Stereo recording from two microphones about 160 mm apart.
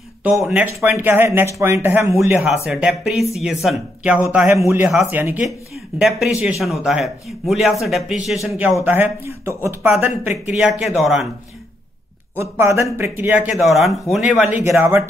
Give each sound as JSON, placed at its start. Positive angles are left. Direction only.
{"t": 0.2, "sound": "speech", "side_deg": -5}
{"t": 0.7, "sound": "speech", "side_deg": -15}
{"t": 2.3, "sound": "speech", "side_deg": 0}
{"t": 10.7, "sound": "speech", "side_deg": 0}
{"t": 12.4, "sound": "speech", "side_deg": -15}
{"t": 13.5, "sound": "speech", "side_deg": 0}